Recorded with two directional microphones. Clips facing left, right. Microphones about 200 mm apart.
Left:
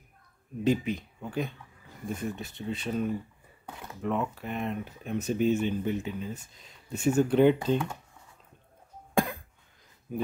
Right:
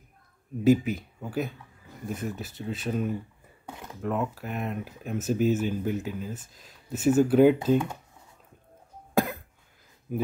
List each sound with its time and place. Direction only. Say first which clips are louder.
0.7 s speech: right 5 dB; 5° right (ahead or behind)
9.1 s cough: right 2 dB; centre (ahead or behind)
10.1 s speech: right 3 dB; 5° right (ahead or behind)